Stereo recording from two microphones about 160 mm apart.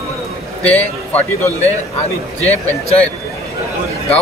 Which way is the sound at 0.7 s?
10° left (ahead or behind).